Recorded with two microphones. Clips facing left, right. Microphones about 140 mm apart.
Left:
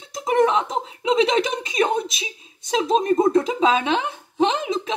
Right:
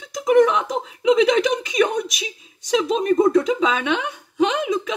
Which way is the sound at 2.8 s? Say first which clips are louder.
Even; 25° left (ahead or behind).